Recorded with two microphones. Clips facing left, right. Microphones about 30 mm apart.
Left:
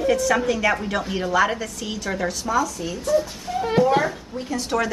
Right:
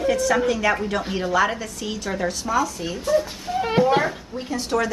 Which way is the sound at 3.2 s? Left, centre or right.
Centre.